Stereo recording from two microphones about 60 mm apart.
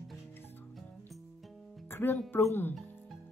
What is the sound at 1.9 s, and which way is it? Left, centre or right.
Music, left.